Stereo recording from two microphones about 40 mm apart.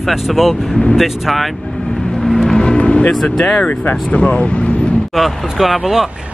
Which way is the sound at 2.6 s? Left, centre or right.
Left.